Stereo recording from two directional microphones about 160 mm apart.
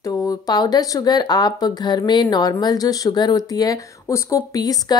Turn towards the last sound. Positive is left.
turn(degrees=25)  # may be behind; listen again after turning